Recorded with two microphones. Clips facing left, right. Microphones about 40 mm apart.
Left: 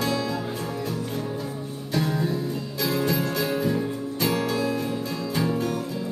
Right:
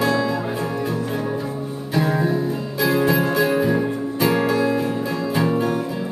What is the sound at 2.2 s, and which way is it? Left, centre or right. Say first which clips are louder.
Music: right 6 dB; centre.